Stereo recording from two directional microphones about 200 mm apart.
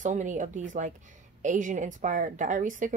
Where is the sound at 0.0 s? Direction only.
40° right (ahead or behind).